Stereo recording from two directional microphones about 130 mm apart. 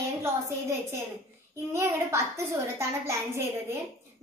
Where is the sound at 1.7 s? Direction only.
20° right (ahead or behind).